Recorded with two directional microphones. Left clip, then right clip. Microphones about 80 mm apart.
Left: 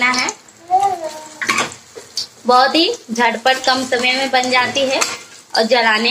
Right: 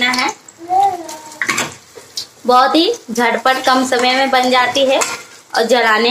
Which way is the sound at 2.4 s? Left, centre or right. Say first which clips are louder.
Right 1 dB; right.